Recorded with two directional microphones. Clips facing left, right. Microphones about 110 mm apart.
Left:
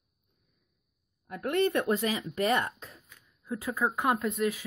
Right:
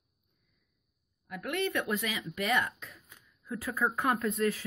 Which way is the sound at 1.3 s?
40° left (ahead or behind).